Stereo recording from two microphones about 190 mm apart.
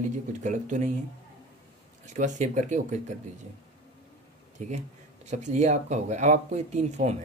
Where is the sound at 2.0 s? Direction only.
40° right (ahead or behind).